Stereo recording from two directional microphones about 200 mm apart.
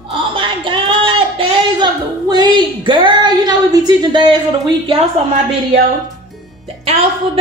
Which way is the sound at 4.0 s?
20° right (ahead or behind).